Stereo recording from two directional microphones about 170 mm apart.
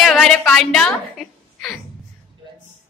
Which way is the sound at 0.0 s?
Centre (ahead or behind).